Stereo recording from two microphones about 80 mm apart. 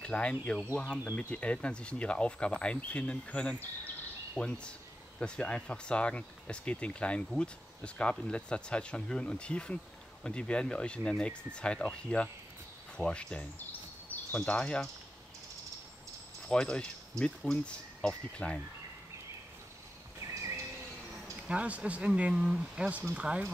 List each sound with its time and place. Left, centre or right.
0.0 s speech: centre
16.4 s speech: centre
20.2 s a sound: right
21.5 s speech: centre